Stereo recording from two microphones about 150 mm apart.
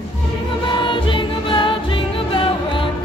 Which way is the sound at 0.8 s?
35° left (ahead or behind).